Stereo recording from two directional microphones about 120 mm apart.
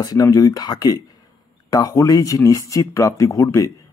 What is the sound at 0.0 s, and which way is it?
Speech, 30° left (ahead or behind).